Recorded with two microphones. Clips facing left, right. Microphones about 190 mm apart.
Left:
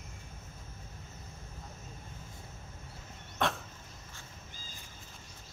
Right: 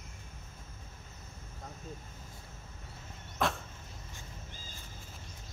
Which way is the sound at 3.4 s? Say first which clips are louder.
Even; centre (ahead or behind).